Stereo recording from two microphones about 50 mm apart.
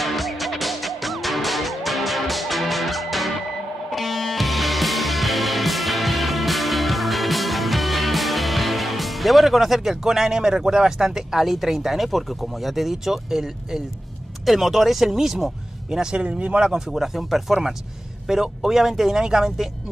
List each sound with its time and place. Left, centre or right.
0.0 s music: centre
14.4 s speech: centre
16.3 s speech: right
16.7 s speech: centre